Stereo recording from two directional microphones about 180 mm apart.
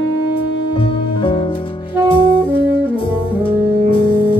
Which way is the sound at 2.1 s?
30° left (ahead or behind).